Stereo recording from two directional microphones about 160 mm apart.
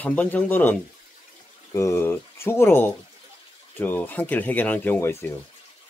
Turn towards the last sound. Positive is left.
turn(degrees=15)  # may be behind; listen again after turning